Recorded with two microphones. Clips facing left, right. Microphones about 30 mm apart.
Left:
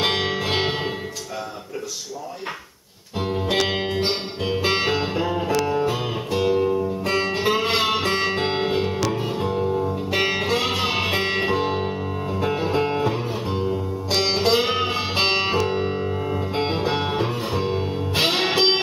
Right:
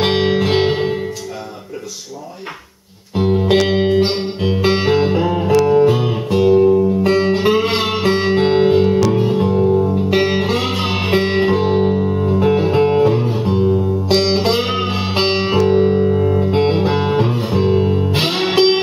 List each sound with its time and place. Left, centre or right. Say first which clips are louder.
0.0 s music: right 7 dB; centre
0.6 s music: right 8 dB; centre
3.2 s music: right 8 dB; centre